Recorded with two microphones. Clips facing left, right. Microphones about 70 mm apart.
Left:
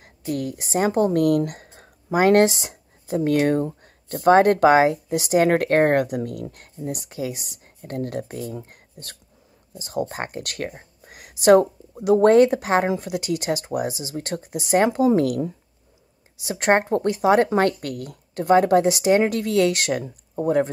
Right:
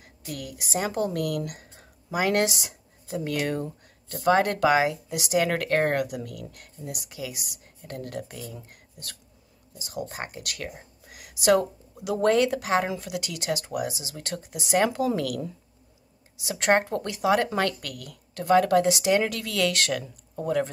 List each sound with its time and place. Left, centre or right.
0.0 s speech: left